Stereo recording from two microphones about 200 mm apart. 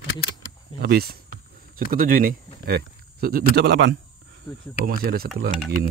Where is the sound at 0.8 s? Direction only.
50° right (ahead or behind).